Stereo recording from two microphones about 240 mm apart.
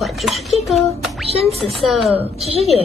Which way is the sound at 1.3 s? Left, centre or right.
Right.